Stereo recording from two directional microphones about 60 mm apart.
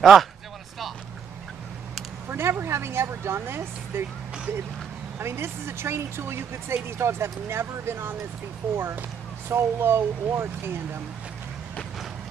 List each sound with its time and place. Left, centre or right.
0.0 s speech: centre
2.2 s speech: right
5.2 s speech: right